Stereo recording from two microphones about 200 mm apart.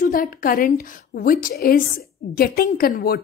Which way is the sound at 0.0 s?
45° left (ahead or behind).